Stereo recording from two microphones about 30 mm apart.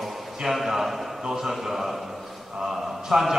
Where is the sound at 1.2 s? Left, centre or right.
Centre.